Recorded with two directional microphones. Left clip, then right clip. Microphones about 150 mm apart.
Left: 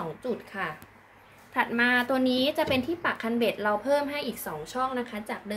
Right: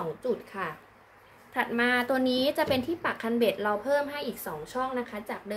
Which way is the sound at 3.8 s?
15° left (ahead or behind).